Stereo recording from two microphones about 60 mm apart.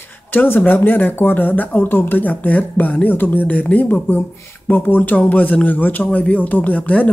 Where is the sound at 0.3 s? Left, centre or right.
Left.